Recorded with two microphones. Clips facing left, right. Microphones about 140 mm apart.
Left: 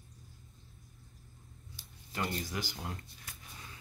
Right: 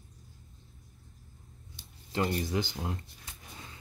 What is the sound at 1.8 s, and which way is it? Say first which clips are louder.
Speech: right 7 dB; 25° right (ahead or behind).